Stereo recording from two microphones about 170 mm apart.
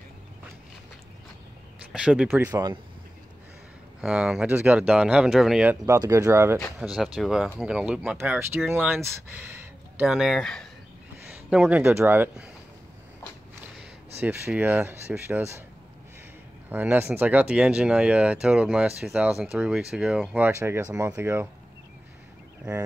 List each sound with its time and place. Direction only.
1.9 s speech: 5° right (ahead or behind)
4.0 s speech: 5° right (ahead or behind)
5.9 s speech: 20° right (ahead or behind)
6.8 s speech: centre (ahead or behind)
11.5 s speech: 5° right (ahead or behind)
13.7 s speech: 5° right (ahead or behind)
16.6 s speech: 10° right (ahead or behind)